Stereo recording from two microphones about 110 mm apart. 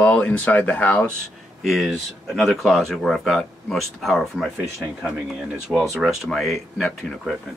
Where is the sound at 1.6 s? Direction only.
Centre (ahead or behind).